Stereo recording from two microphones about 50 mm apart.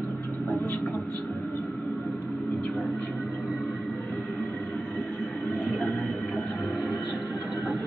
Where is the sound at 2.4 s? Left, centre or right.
Centre.